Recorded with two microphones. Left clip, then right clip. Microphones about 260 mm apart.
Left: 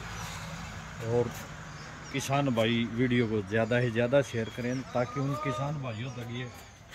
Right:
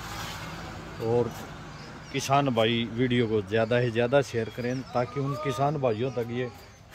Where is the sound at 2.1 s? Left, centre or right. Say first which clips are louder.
Right 5 dB; centre.